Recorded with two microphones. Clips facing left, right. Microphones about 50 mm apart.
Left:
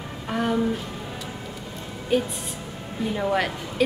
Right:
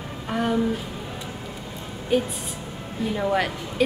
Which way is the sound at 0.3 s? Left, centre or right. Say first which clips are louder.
Even; centre.